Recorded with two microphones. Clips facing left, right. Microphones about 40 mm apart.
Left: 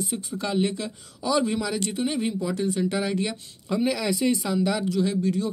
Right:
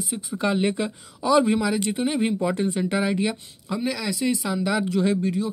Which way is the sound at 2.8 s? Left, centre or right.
Centre.